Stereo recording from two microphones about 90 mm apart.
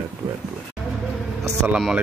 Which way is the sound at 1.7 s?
10° right (ahead or behind).